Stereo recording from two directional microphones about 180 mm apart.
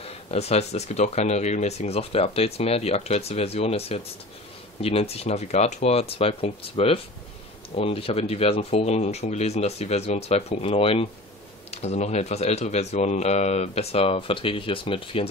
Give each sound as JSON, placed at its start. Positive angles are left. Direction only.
{"t": 0.0, "sound": "speech", "side_deg": 35}